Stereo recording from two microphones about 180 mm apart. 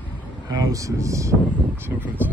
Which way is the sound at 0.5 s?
20° right (ahead or behind).